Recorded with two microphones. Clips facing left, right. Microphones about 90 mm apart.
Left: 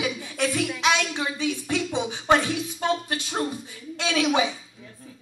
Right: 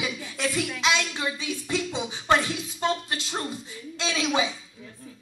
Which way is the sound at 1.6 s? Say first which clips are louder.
Left 3 dB; 15° left (ahead or behind).